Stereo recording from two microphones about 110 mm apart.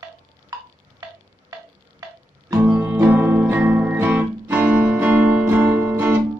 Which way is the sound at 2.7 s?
15° right (ahead or behind).